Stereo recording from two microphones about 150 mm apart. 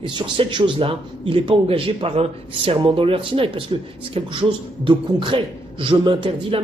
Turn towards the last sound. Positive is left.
turn(degrees=-35)  # may be behind; listen again after turning